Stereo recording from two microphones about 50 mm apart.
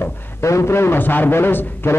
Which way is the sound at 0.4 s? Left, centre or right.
Left.